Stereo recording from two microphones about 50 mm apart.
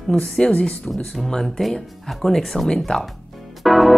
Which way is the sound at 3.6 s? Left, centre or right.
Centre.